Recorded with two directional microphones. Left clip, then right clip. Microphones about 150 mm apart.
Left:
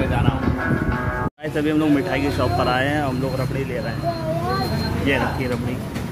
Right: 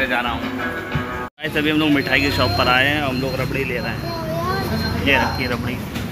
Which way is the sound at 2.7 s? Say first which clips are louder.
Right 4 dB; 30° left (ahead or behind).